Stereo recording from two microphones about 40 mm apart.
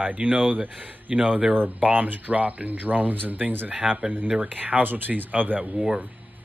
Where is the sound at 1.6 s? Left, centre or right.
Right.